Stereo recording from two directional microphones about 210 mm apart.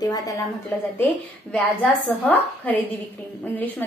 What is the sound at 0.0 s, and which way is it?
A woman's voice, 15° left (ahead or behind).